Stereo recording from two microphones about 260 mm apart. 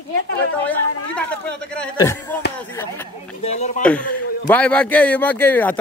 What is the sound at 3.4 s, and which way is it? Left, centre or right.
Speech, left.